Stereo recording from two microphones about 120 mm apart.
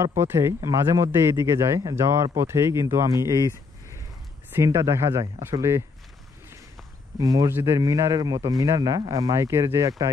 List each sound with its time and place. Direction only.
0.2 s a man's voice: 25° right (ahead or behind)
1.8 s a man's voice: 35° right (ahead or behind)
4.6 s a man's voice: 25° right (ahead or behind)
7.2 s a man's voice: 30° right (ahead or behind)